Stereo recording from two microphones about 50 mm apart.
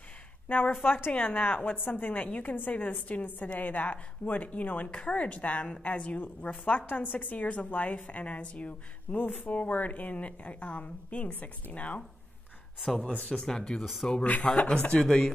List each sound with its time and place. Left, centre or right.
0.5 s a woman's voice: left; by 13.8 s centre
14.2 s a woman's voice: left